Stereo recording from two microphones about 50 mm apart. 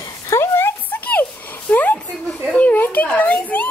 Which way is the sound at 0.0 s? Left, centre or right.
Left.